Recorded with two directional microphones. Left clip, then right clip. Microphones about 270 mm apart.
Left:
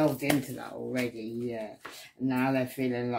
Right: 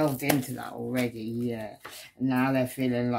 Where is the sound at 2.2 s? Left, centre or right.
Right.